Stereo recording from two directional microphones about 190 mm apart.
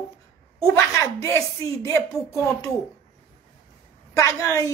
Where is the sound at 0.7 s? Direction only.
15° left (ahead or behind).